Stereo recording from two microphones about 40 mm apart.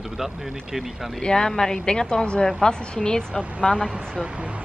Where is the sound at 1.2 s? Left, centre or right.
Centre.